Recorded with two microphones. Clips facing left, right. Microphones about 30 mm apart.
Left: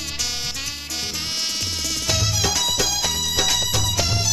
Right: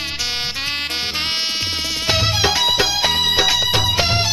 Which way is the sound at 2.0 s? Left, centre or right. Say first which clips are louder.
Right 6 dB; right.